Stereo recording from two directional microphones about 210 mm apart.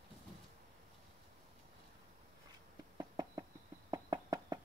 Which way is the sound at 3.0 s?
20° right (ahead or behind).